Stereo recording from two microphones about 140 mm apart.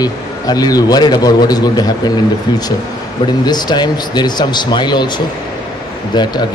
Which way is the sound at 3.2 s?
30° left (ahead or behind).